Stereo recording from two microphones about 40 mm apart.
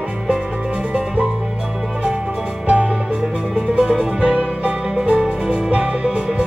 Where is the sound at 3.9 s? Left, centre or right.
Centre.